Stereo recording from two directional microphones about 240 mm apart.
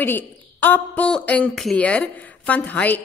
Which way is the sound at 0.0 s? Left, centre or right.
Centre.